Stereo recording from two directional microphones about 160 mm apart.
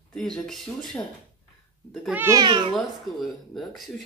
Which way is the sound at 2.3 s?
25° right (ahead or behind).